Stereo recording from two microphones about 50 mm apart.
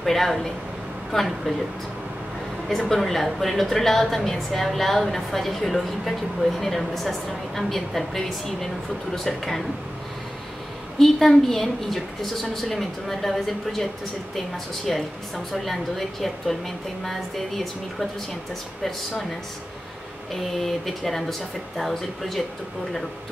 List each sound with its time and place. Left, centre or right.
0.0 s a woman's voice: centre
2.9 s a woman's voice: centre
11.0 s a woman's voice: centre
14.9 s a woman's voice: centre
20.3 s a woman's voice: centre